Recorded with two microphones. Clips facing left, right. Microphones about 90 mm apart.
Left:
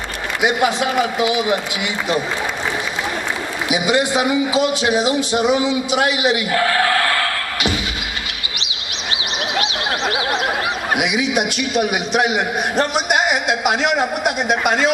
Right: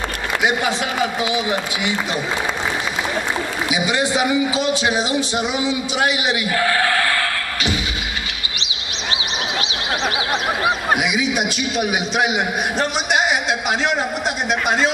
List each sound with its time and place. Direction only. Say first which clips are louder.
3.8 s a man's voice: left 3 dB; 15° left (ahead or behind)
13.7 s a man's voice: left 4 dB; 15° left (ahead or behind)